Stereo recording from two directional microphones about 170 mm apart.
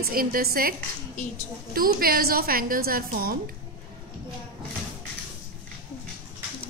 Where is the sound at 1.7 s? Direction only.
60° right (ahead or behind).